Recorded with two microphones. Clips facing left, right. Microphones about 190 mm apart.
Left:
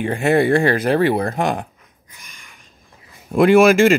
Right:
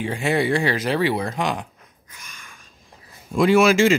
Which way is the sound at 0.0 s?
55° left (ahead or behind).